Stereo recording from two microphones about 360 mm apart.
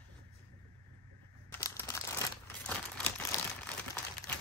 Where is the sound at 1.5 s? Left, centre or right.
Centre.